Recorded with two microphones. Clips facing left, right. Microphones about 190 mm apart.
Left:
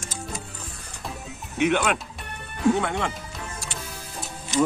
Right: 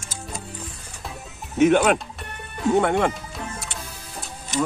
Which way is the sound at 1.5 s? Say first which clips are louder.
Right 6 dB; 45° right (ahead or behind).